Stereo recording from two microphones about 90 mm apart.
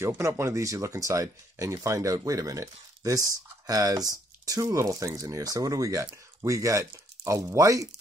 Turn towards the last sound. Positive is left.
turn(degrees=-40)  # may be behind; listen again after turning